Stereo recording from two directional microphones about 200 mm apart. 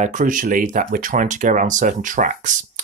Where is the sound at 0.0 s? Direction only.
40° right (ahead or behind).